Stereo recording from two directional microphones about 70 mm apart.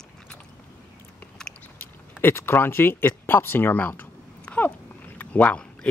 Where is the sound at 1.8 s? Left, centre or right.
Left.